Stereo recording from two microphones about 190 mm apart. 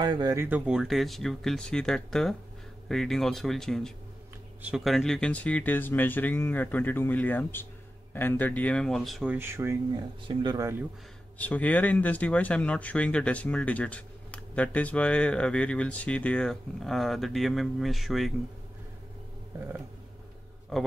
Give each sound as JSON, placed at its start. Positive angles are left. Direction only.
{"t": 0.0, "sound": "speech", "side_deg": -20}
{"t": 11.3, "sound": "speech", "side_deg": 10}